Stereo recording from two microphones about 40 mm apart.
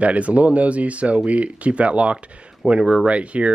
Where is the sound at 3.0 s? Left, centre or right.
Right.